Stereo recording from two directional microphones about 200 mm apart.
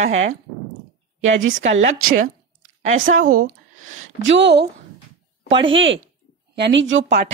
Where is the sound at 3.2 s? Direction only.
45° right (ahead or behind).